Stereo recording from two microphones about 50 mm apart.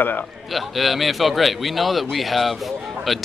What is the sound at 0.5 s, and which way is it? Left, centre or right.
Speech, centre.